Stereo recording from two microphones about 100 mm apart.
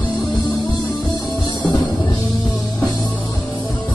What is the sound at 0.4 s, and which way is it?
Music, 40° left (ahead or behind).